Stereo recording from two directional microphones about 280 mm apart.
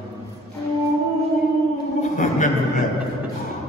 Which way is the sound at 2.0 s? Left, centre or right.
Left.